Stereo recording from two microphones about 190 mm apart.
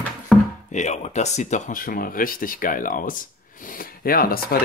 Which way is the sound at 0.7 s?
40° left (ahead or behind).